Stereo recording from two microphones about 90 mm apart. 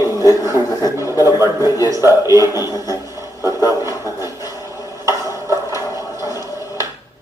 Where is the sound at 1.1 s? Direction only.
45° left (ahead or behind).